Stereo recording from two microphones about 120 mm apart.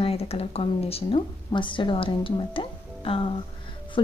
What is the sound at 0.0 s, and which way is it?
A woman's voice, 55° left (ahead or behind).